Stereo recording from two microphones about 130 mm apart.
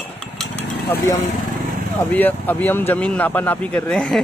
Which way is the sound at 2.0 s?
15° left (ahead or behind).